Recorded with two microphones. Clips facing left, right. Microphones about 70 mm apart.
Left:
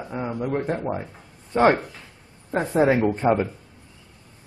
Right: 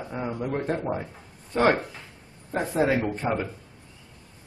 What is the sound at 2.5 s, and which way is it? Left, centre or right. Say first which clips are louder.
Speech: left 4 dB; left.